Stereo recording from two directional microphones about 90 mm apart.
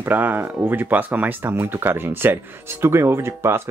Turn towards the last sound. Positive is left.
turn(degrees=-30)  # may be behind; listen again after turning